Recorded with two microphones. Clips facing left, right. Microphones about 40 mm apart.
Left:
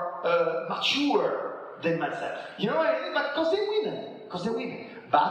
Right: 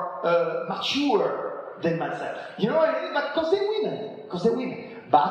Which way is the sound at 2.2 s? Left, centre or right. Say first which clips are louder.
Right 3 dB; left.